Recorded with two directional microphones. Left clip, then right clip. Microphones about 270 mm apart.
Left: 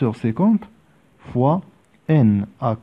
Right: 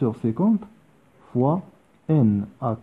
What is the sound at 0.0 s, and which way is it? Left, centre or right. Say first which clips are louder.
Speech: left 3 dB; left.